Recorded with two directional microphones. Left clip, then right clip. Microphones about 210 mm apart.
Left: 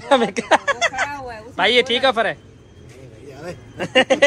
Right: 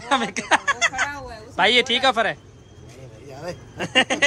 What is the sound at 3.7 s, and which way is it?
Speech, 15° right (ahead or behind).